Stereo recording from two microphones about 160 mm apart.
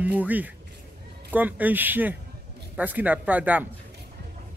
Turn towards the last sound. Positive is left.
turn(degrees=-10)  # may be behind; listen again after turning